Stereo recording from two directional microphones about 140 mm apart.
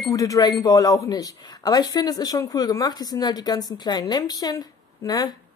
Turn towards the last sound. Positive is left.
turn(degrees=30)  # may be behind; listen again after turning